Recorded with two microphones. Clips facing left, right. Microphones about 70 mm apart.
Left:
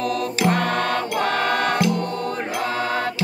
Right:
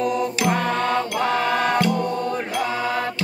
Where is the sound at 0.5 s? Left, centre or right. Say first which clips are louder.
Left 1 dB; centre.